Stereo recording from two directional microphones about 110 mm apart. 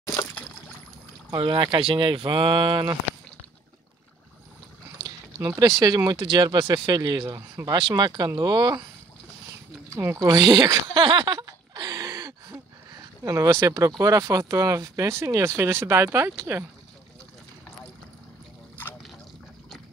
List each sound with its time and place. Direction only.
0.0 s a sound: 30° left (ahead or behind)
0.3 s a sound: 10° left (ahead or behind)
1.3 s speech: 55° right (ahead or behind)
5.6 s speech: 35° right (ahead or behind)
7.2 s speech: 30° right (ahead or behind)
9.9 s speech: 30° right (ahead or behind)